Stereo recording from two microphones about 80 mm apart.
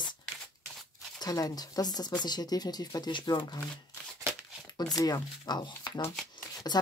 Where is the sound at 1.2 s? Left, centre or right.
Left.